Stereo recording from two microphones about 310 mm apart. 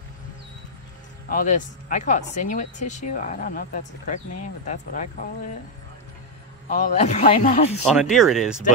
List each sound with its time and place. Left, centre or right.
1.3 s speech: left
6.7 s speech: left
7.8 s speech: centre